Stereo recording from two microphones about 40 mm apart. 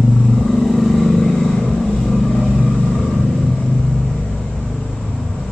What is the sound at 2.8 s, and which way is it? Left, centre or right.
Vehicle, centre.